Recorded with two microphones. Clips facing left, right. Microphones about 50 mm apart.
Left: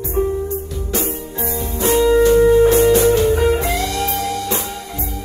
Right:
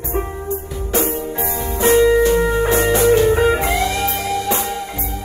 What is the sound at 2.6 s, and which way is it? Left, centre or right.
Music, right.